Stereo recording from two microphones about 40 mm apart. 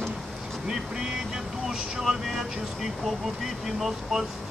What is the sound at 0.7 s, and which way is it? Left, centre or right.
Speech, centre.